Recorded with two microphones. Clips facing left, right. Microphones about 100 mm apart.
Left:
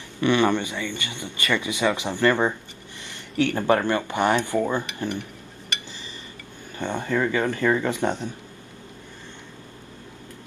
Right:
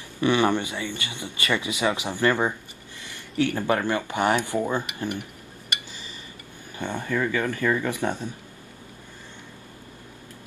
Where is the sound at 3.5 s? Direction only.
20° left (ahead or behind).